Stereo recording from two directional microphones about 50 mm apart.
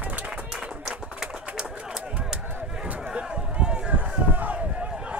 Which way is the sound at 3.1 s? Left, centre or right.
Centre.